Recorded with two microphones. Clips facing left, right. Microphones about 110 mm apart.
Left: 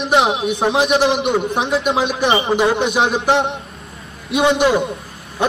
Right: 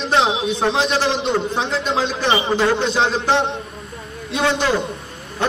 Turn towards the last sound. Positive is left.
turn(degrees=15)  # may be behind; listen again after turning